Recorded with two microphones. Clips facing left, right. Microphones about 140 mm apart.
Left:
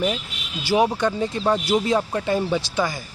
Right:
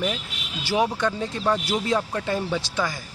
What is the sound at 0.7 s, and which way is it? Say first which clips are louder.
Speech: left 3 dB; 15° left (ahead or behind).